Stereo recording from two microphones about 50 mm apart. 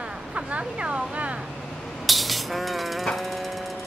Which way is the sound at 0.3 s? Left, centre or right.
Right.